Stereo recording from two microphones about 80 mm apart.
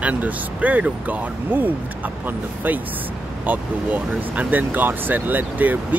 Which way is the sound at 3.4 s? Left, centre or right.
Right.